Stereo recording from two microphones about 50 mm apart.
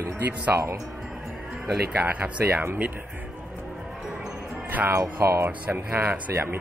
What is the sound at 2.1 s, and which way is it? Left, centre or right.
Speech, right.